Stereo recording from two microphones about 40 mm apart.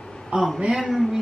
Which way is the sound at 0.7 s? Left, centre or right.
Centre.